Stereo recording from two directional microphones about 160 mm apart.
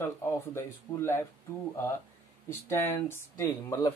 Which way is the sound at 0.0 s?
15° left (ahead or behind).